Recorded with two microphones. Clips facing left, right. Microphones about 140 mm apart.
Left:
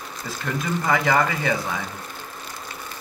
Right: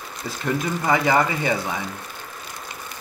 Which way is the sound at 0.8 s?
20° right (ahead or behind).